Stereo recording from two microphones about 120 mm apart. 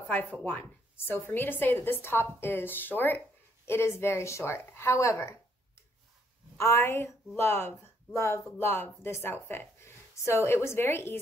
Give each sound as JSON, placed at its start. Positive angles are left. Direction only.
{"t": 0.0, "sound": "a woman's voice", "side_deg": 15}
{"t": 6.6, "sound": "a woman's voice", "side_deg": 20}